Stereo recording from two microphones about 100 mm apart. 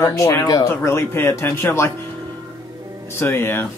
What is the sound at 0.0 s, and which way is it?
Speech, 30° left (ahead or behind).